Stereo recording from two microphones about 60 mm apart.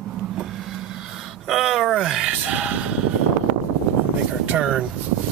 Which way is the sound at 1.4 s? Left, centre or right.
Centre.